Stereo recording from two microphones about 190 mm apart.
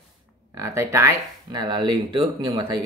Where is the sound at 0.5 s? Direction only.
15° right (ahead or behind).